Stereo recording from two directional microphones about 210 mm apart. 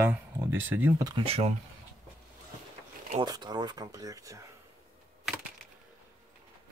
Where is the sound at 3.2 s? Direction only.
20° right (ahead or behind).